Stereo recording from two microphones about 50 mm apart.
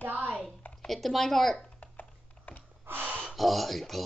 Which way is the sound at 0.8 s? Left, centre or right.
Centre.